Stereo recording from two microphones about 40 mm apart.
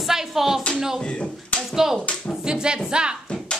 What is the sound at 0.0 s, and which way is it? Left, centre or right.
Music, centre.